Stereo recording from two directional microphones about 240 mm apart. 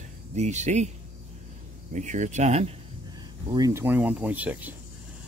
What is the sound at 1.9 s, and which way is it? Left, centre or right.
Speech, right.